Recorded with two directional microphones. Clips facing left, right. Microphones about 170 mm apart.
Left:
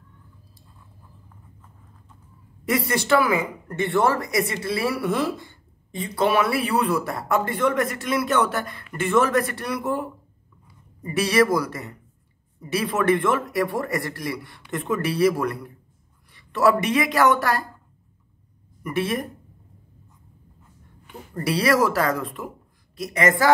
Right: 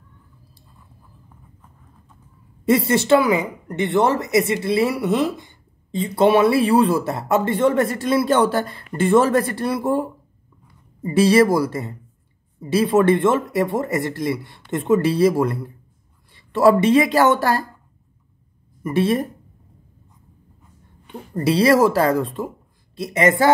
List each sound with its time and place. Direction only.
2.6 s speech: 25° right (ahead or behind)
18.8 s speech: 25° right (ahead or behind)
21.3 s speech: 25° right (ahead or behind)